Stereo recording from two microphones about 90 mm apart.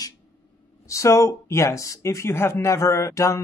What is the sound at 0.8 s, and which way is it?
Speech, 35° left (ahead or behind).